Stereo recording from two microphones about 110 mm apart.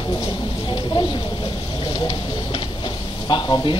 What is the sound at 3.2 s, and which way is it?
Speech, 45° left (ahead or behind).